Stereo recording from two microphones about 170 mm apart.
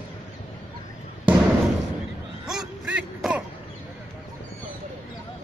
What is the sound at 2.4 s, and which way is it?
Throat clearing, 5° right (ahead or behind).